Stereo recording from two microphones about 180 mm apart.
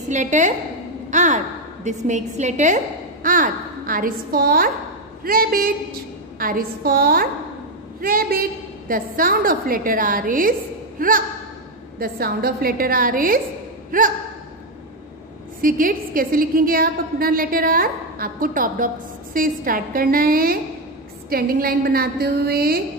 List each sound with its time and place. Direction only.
0.1 s a woman's voice: 45° right (ahead or behind)
1.1 s a sound: 40° right (ahead or behind)
2.0 s a woman's voice: 40° right (ahead or behind)
15.6 s a woman's voice: 50° right (ahead or behind)